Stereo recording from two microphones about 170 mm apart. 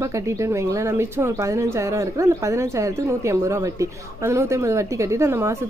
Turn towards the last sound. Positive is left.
turn(degrees=-15)  # may be behind; listen again after turning